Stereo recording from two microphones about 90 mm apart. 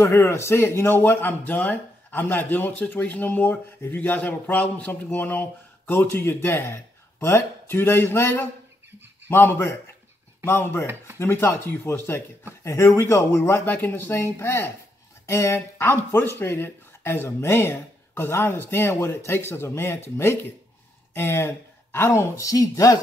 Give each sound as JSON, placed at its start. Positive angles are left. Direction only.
{"t": 0.0, "sound": "speech", "side_deg": 30}